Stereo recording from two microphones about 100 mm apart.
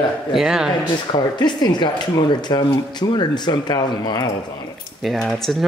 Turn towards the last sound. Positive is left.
turn(degrees=0)  # may be behind; listen again after turning